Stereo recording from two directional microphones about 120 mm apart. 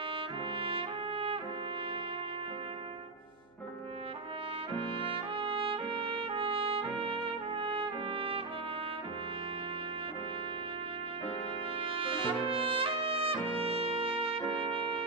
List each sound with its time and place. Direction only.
0.6 s trumpet: 50° right (ahead or behind)
4.7 s trumpet: 45° right (ahead or behind)
11.8 s trumpet: 45° right (ahead or behind)
14.7 s brass instrument: 50° right (ahead or behind)